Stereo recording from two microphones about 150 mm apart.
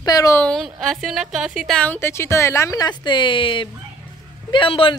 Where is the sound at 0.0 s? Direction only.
25° left (ahead or behind).